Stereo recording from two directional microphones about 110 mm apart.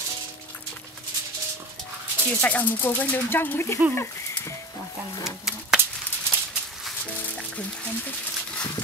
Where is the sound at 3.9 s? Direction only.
25° left (ahead or behind).